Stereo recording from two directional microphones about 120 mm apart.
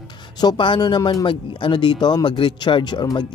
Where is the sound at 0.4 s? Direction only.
40° left (ahead or behind).